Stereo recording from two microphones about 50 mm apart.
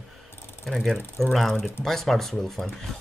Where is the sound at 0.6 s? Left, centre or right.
Centre.